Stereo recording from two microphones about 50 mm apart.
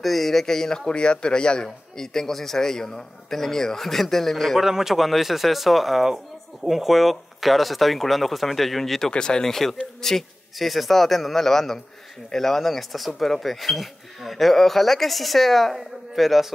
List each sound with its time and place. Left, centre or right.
0.0 s a man's voice: centre
4.6 s speech: centre
9.1 s speech: centre